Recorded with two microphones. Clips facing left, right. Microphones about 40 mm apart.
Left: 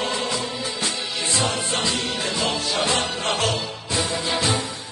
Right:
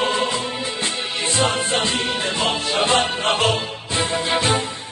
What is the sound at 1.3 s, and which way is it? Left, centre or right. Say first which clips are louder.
Music: right 5 dB; right.